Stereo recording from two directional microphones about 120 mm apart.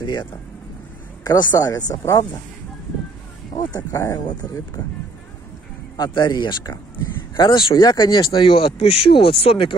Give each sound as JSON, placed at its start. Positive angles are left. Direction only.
{"t": 0.0, "sound": "speech", "side_deg": 40}
{"t": 3.5, "sound": "speech", "side_deg": 30}
{"t": 5.9, "sound": "speech", "side_deg": 40}